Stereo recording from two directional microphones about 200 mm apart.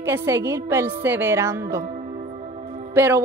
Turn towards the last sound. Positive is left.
turn(degrees=-10)  # may be behind; listen again after turning